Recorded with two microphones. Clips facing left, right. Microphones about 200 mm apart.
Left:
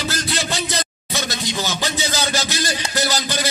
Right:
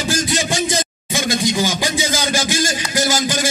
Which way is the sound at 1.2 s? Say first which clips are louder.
Right 12 dB; 45° right (ahead or behind).